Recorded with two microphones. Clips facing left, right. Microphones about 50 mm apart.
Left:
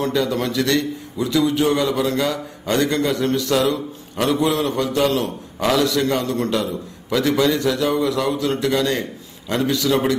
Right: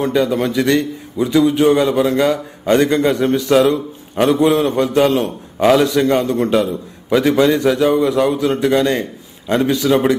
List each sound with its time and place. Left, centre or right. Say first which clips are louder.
0.0 s a man's voice: right 4 dB; right